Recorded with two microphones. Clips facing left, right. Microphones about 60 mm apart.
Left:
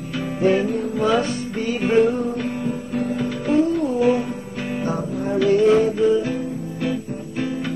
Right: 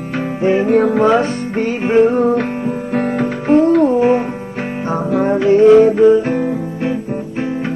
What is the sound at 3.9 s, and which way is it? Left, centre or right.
Music, right.